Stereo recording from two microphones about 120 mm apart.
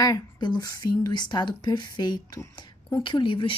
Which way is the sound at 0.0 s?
35° left (ahead or behind).